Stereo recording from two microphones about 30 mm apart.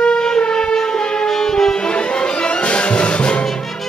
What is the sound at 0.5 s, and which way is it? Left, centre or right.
Brass instrument, left.